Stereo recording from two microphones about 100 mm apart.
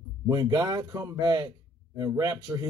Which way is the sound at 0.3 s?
40° right (ahead or behind).